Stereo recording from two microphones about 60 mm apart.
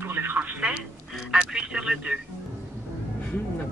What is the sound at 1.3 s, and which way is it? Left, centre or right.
Radio, centre.